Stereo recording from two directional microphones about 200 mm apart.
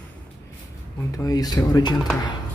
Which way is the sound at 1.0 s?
15° left (ahead or behind).